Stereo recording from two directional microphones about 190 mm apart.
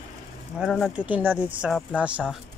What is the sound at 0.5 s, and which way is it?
Speech, centre (ahead or behind).